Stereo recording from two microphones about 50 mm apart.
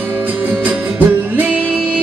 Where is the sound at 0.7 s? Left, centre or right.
Right.